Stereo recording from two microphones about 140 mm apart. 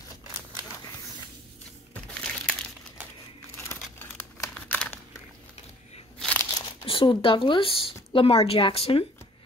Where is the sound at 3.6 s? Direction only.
15° left (ahead or behind).